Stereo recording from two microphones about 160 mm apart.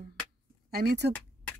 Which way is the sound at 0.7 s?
75° right (ahead or behind).